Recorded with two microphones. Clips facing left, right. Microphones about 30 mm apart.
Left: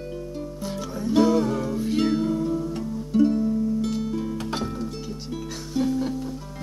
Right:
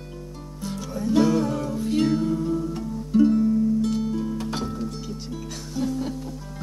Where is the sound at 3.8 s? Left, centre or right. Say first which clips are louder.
Right 2 dB; centre.